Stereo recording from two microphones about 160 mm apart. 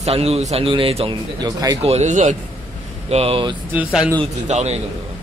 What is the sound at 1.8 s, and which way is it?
Speech, 45° right (ahead or behind).